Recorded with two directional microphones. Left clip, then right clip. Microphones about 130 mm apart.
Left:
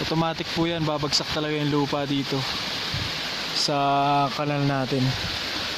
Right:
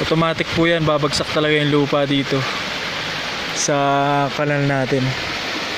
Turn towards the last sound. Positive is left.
turn(degrees=10)  # may be behind; listen again after turning